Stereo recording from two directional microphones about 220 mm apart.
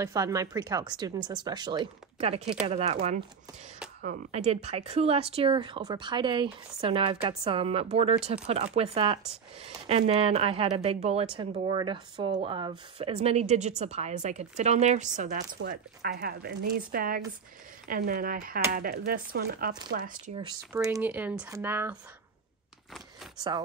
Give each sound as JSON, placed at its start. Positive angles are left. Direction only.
{"t": 0.0, "sound": "speech", "side_deg": -15}
{"t": 20.7, "sound": "speech", "side_deg": -10}